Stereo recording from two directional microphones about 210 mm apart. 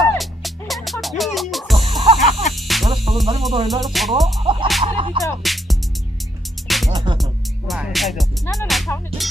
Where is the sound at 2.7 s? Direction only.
Centre (ahead or behind).